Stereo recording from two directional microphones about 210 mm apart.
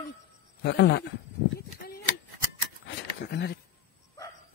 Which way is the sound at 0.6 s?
50° left (ahead or behind).